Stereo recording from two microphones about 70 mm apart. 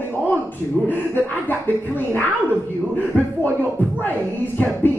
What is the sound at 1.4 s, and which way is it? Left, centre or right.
Speech, left.